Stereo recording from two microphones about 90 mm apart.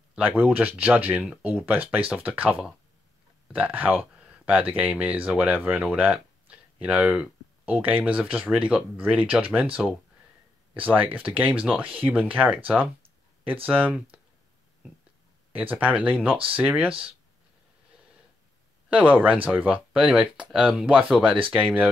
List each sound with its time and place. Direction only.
0.4 s speech: 20° right (ahead or behind)
10.8 s speech: 20° right (ahead or behind)
15.5 s speech: 20° right (ahead or behind)
18.9 s speech: 15° right (ahead or behind)